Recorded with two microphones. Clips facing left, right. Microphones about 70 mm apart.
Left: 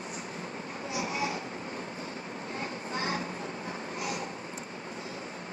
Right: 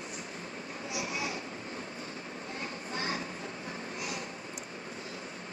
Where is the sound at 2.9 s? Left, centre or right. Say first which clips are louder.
Left 3 dB; left.